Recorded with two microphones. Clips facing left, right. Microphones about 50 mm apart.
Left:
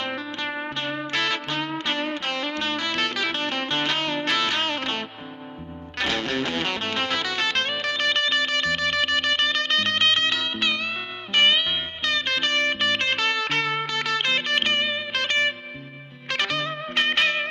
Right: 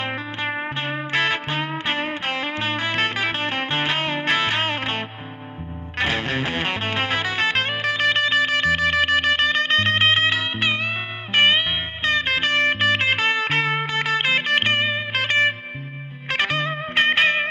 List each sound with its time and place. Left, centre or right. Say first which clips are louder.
0.0 s music: right 2 dB; right